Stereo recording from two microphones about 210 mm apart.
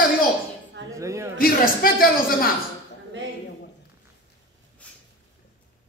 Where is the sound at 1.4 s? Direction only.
45° left (ahead or behind).